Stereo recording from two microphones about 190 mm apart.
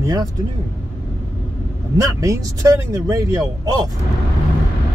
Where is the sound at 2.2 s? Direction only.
15° right (ahead or behind).